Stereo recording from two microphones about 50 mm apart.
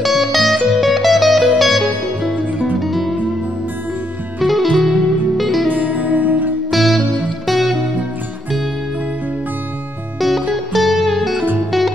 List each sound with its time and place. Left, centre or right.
0.0 s music: centre
4.4 s music: centre
5.8 s music: right
6.7 s music: centre
10.5 s music: centre